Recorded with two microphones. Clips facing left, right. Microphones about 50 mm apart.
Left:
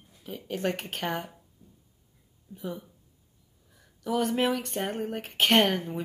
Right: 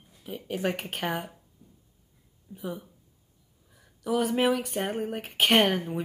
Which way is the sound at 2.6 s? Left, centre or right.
Centre.